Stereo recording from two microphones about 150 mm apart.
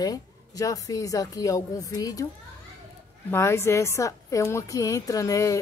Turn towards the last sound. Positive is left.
turn(degrees=20)  # may be behind; listen again after turning